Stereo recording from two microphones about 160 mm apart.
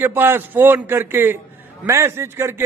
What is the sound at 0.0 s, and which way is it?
A man's voice, 15° right (ahead or behind).